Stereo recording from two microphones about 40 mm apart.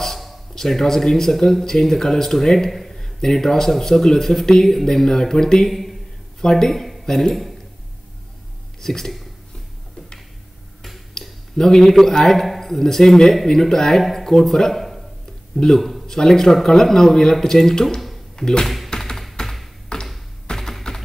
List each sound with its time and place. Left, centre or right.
0.0 s a sound: centre
0.6 s speech: centre
5.7 s speech: centre
8.8 s speech: centre
11.1 s speech: centre
18.9 s tap: centre
19.9 s tap: centre
20.4 s typing: centre